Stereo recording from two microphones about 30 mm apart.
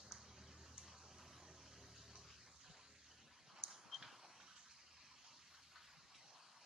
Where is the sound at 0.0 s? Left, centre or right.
Centre.